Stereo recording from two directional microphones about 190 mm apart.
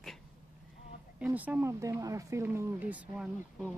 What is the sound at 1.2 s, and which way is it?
Speech, 10° right (ahead or behind).